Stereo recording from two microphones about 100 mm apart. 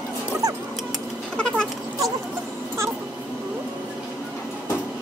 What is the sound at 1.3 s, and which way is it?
Cat, 10° left (ahead or behind).